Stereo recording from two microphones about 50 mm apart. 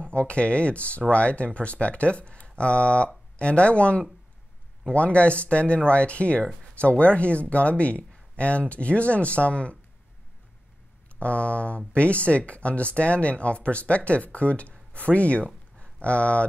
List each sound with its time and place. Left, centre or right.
0.0 s speech: left
11.1 s speech: left